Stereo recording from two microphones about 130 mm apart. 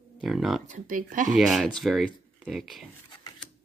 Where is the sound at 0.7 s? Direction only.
80° right.